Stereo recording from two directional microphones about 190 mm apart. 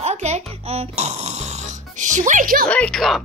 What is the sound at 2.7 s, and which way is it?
Speech, 5° left (ahead or behind).